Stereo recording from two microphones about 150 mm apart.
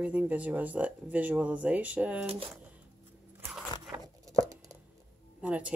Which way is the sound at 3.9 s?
25° right (ahead or behind).